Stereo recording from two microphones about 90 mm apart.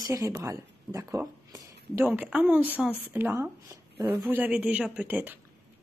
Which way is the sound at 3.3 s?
35° right (ahead or behind).